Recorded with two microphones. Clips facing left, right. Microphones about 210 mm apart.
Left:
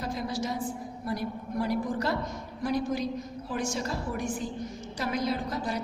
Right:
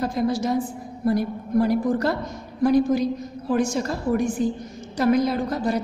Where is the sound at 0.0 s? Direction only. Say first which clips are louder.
Right 9 dB; 50° right (ahead or behind).